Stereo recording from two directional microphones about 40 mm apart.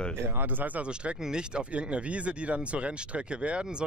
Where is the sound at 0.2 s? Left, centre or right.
Right.